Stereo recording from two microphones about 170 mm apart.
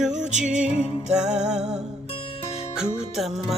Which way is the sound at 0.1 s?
45° right (ahead or behind).